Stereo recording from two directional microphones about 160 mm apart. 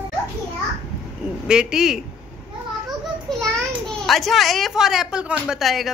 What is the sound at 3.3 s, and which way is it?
Speech, 5° left (ahead or behind).